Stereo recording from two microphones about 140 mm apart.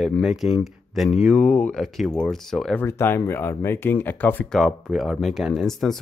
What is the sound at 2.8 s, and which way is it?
Speech, 15° left (ahead or behind).